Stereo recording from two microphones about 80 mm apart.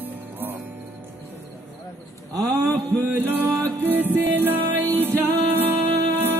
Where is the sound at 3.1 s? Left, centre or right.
Right.